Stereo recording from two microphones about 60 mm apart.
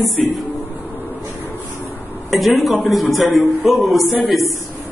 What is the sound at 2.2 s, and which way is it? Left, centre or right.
A man's voice, centre.